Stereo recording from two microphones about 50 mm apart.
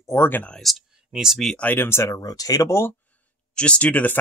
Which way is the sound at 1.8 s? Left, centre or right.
Left.